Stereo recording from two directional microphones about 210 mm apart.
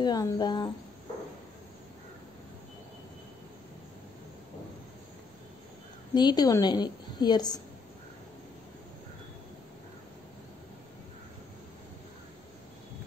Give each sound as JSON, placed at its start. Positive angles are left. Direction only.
{"t": 0.0, "sound": "a woman's voice", "side_deg": 20}
{"t": 6.1, "sound": "a woman's voice", "side_deg": 20}